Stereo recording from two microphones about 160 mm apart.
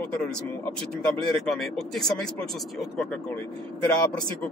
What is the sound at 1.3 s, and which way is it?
Speech, centre (ahead or behind).